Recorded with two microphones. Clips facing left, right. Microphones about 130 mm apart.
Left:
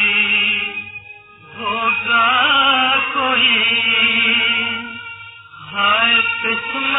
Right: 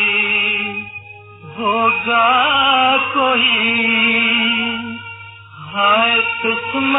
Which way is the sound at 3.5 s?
40° right (ahead or behind).